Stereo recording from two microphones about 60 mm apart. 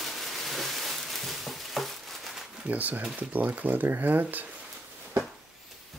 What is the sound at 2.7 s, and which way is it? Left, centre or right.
Speech, right.